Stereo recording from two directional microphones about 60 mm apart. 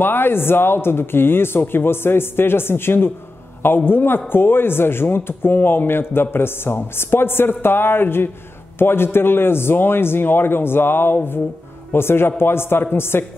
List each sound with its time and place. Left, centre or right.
0.0 s a man's voice: left